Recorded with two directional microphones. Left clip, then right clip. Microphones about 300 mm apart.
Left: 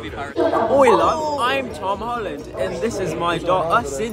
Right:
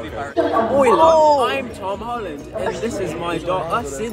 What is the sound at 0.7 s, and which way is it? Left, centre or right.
Speech, centre.